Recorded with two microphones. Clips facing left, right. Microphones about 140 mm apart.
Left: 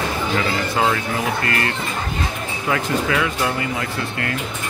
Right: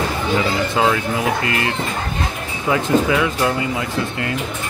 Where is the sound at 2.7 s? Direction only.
20° right (ahead or behind).